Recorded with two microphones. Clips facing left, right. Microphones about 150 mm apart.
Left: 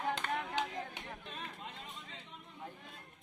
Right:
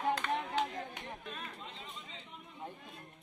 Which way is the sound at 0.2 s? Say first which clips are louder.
Right 3 dB; 40° left (ahead or behind).